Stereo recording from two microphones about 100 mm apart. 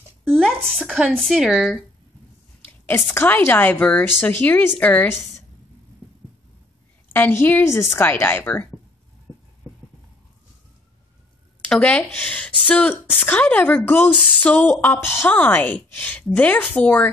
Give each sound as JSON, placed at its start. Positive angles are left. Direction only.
{"t": 0.2, "sound": "a sound", "side_deg": 5}
{"t": 0.7, "sound": "speech", "side_deg": 0}
{"t": 3.1, "sound": "a woman's voice", "side_deg": 25}
{"t": 7.1, "sound": "a woman's voice", "side_deg": 20}
{"t": 9.6, "sound": "clip-clop", "side_deg": -35}
{"t": 11.6, "sound": "a woman's voice", "side_deg": 15}